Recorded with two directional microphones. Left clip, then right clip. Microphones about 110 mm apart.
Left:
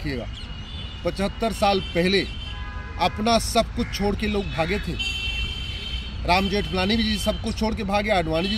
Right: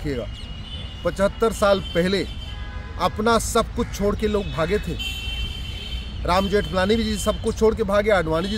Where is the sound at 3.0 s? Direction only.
45° right (ahead or behind).